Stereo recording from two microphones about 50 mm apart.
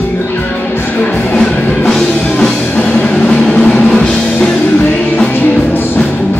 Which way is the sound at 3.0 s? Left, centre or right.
Centre.